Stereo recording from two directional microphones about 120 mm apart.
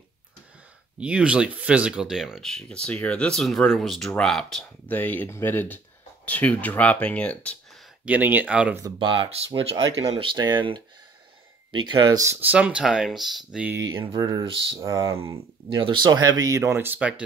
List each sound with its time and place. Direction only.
0.9 s speech: 10° right (ahead or behind)
4.8 s speech: 15° left (ahead or behind)
8.0 s speech: 15° right (ahead or behind)
9.0 s speech: 40° right (ahead or behind)
12.2 s speech: 25° right (ahead or behind)
12.4 s speech: 10° right (ahead or behind)
13.9 s speech: 30° right (ahead or behind)
14.4 s speech: 45° right (ahead or behind)
14.8 s speech: 30° right (ahead or behind)
15.8 s speech: 40° right (ahead or behind); by 17.1 s 15° right (ahead or behind)